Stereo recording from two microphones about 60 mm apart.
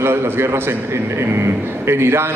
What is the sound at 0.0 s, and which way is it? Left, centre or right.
Speech, right.